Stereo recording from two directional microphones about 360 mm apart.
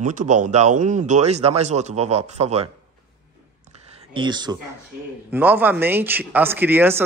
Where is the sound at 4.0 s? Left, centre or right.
Centre.